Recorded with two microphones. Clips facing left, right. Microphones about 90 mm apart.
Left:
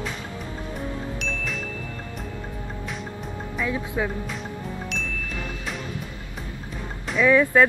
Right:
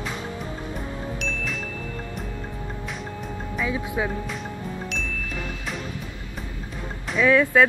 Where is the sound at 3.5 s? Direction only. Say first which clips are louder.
Even; 5° right (ahead or behind).